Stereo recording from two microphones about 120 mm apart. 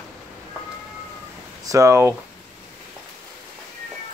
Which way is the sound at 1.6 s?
25° right (ahead or behind).